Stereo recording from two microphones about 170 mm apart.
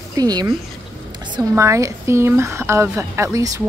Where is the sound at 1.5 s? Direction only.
15° right (ahead or behind).